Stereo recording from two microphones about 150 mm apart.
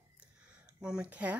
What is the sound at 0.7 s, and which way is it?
Speech, 5° right (ahead or behind).